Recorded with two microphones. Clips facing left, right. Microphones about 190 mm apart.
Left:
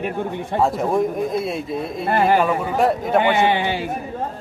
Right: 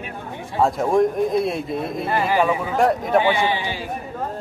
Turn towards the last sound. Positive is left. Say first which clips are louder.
# left 4 dB
turn(degrees=60)  # may be behind; listen again after turning